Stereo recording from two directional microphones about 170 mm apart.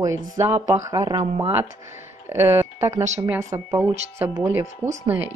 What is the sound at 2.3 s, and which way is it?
Speech, 15° right (ahead or behind).